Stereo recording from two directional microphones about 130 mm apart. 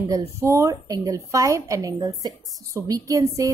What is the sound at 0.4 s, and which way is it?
Speech, 20° right (ahead or behind).